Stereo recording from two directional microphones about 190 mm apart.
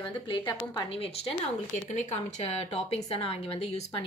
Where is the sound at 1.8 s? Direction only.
35° left (ahead or behind).